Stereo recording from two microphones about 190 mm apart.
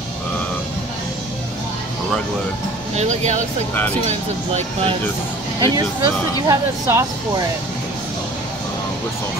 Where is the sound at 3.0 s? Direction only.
40° right (ahead or behind).